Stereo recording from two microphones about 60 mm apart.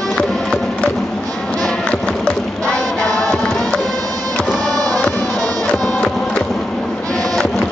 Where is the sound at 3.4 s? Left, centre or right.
Centre.